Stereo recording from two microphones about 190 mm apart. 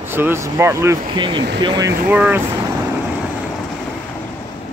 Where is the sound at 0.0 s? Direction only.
10° right (ahead or behind).